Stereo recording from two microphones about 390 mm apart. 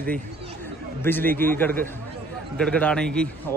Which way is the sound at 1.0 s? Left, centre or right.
Centre.